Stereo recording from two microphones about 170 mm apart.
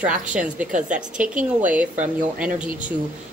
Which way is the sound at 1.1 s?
50° right (ahead or behind).